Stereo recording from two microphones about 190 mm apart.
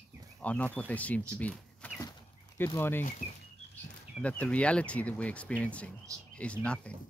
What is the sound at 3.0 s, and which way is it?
Speech, 40° left (ahead or behind).